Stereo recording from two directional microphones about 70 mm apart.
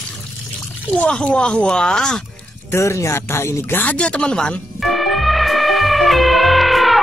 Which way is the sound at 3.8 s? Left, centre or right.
Centre.